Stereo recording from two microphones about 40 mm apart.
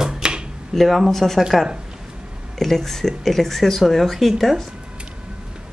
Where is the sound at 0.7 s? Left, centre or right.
Centre.